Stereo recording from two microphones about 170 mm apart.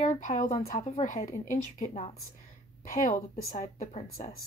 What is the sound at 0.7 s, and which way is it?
A woman's voice, 40° left (ahead or behind).